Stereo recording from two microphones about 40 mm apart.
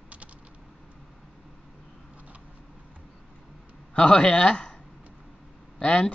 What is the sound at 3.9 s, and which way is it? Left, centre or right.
Speech, left.